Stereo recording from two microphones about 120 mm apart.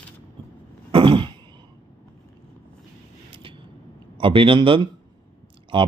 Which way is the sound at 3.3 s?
45° right (ahead or behind).